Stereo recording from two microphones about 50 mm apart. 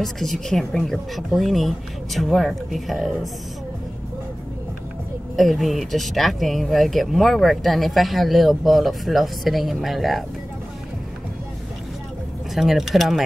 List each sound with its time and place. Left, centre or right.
0.0 s speech: centre
5.3 s speech: centre
12.5 s speech: centre